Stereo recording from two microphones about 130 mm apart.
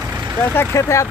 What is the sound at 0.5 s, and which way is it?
Speech, 20° left (ahead or behind).